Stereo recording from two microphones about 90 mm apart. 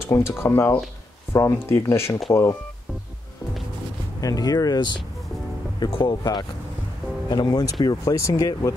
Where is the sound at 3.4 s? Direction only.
40° left (ahead or behind).